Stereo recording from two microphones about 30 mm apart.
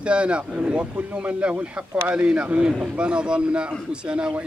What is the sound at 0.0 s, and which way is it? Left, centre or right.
Speech, right.